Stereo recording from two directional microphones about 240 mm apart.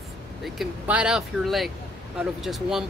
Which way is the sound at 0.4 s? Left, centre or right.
Centre.